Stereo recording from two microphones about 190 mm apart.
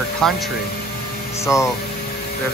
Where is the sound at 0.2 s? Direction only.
Centre (ahead or behind).